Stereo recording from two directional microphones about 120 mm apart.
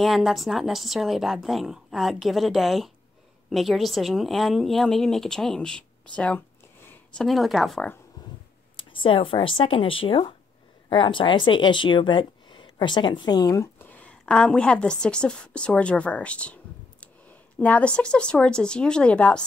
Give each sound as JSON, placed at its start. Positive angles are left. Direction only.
{"t": 0.0, "sound": "speech", "side_deg": 0}
{"t": 8.9, "sound": "speech", "side_deg": 45}
{"t": 13.7, "sound": "a woman's voice", "side_deg": 15}
{"t": 17.6, "sound": "speech", "side_deg": 10}